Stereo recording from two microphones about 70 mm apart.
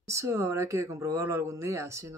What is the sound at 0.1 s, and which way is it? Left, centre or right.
Speech, right.